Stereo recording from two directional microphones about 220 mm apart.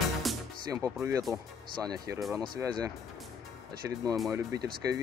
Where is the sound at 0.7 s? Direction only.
15° right (ahead or behind).